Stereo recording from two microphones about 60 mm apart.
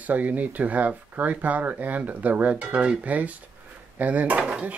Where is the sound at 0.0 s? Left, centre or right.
Right.